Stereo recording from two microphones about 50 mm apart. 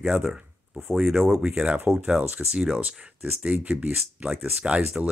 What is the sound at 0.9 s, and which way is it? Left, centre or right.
Speech, centre.